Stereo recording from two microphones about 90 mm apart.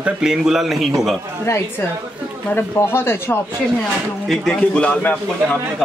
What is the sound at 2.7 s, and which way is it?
Speech, 25° left (ahead or behind).